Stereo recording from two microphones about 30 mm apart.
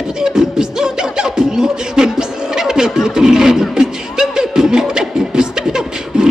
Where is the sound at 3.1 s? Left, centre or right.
Centre.